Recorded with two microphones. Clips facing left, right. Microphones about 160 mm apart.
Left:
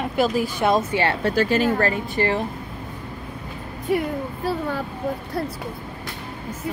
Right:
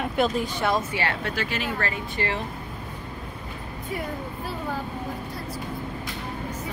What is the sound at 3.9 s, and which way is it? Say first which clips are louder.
Speech: left 10 dB; 80° left.